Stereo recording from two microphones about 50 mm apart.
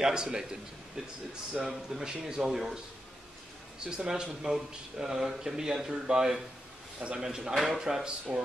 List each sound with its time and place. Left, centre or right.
0.0 s speech: centre
3.8 s a man's voice: centre
7.2 s speech: centre